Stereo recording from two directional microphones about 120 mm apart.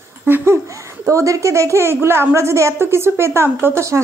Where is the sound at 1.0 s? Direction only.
25° right (ahead or behind).